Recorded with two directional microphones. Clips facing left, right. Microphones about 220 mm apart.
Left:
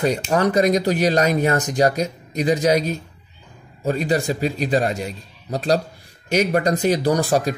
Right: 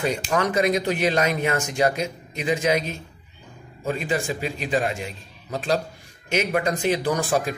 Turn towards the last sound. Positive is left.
turn(degrees=40)  # may be behind; listen again after turning